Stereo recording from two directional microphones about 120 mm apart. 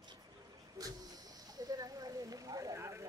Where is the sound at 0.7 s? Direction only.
30° right (ahead or behind).